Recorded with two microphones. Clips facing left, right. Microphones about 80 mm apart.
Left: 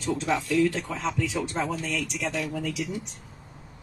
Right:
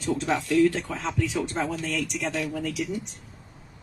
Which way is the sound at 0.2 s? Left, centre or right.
Right.